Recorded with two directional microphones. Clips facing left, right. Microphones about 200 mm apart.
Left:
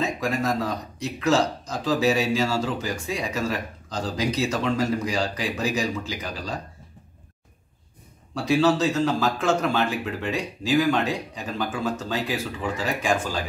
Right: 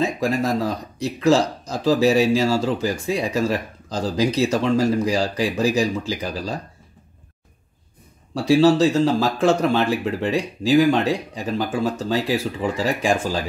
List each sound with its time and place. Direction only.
0.0 s speech: 35° right (ahead or behind)
8.5 s speech: 30° right (ahead or behind)